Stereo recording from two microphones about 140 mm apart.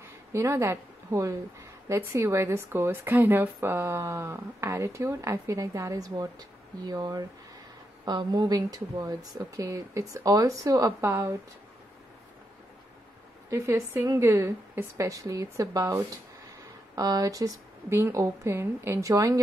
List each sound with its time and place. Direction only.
0.3 s speech: 20° right (ahead or behind)
13.5 s speech: 20° right (ahead or behind)